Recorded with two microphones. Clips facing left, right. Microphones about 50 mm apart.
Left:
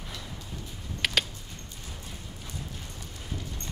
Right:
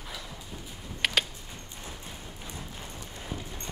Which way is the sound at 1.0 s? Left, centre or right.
Centre.